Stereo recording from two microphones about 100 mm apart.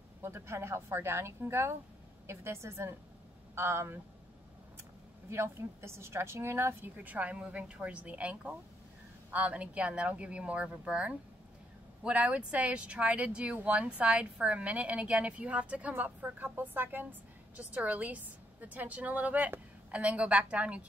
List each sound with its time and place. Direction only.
0.2 s speech: 25° right (ahead or behind)
5.3 s speech: 25° right (ahead or behind)